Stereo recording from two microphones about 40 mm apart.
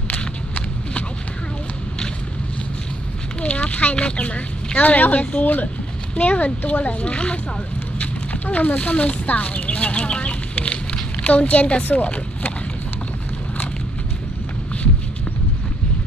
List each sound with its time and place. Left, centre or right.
3.4 s a woman's voice: left